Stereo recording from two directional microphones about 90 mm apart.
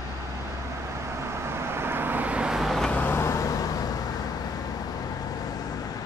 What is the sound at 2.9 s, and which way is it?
Vehicle, 20° left (ahead or behind).